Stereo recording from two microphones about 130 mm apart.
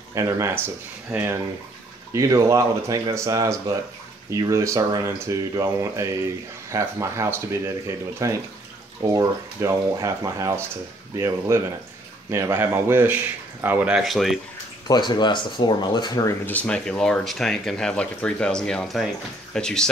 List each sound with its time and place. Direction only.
0.1 s speech: 25° right (ahead or behind); by 14.4 s centre (ahead or behind)
14.9 s speech: 35° left (ahead or behind)
16.4 s speech: 10° left (ahead or behind)